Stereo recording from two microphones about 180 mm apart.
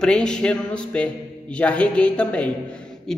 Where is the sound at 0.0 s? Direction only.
5° left (ahead or behind).